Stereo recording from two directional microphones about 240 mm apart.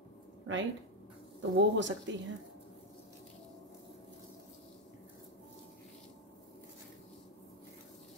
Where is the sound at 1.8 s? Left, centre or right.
Right.